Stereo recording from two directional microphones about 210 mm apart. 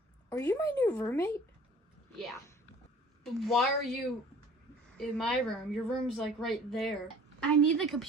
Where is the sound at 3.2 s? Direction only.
Centre (ahead or behind).